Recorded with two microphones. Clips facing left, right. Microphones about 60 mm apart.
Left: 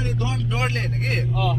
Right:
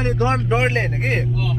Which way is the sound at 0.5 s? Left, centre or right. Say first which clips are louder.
Right 6 dB; right.